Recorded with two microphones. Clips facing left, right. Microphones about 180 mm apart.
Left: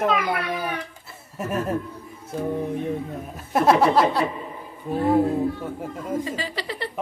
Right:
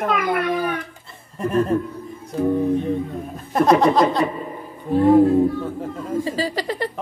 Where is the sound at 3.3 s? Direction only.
5° left (ahead or behind).